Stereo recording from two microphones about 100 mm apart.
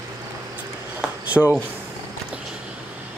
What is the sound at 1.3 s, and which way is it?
Speech, 20° right (ahead or behind).